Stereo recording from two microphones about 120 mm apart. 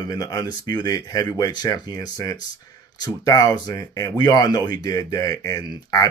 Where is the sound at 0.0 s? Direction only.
35° left (ahead or behind).